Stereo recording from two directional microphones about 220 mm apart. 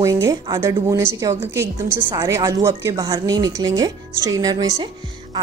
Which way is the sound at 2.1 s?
15° right (ahead or behind).